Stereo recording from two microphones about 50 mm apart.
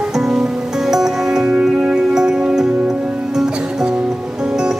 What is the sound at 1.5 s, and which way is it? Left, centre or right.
Music, right.